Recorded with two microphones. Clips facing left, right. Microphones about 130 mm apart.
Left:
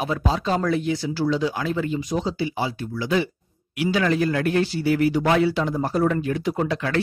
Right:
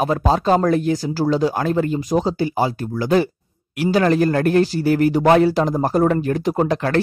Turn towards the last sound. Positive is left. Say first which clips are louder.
# right 5 dB
turn(degrees=-45)  # may be behind; listen again after turning